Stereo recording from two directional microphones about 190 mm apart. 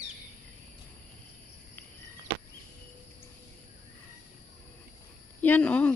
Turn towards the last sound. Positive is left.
turn(degrees=10)  # may be behind; listen again after turning